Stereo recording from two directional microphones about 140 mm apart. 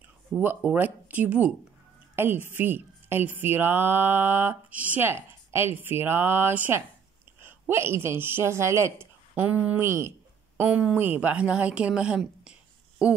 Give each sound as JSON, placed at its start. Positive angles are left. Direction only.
{"t": 0.3, "sound": "speech", "side_deg": 5}
{"t": 0.7, "sound": "a woman's voice", "side_deg": -10}